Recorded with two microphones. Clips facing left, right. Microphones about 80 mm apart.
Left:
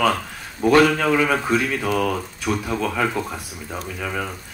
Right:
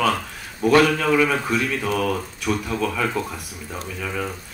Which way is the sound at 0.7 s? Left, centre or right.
Left.